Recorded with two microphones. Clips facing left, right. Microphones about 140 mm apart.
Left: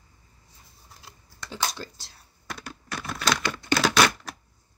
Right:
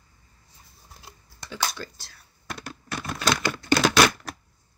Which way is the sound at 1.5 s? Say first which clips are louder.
Right 1 dB; 30° left (ahead or behind).